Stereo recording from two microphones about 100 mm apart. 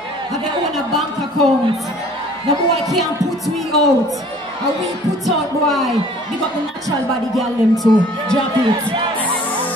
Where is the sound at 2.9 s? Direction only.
Centre (ahead or behind).